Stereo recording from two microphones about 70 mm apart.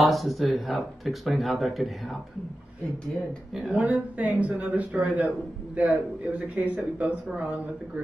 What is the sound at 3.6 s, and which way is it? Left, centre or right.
A woman's voice, centre.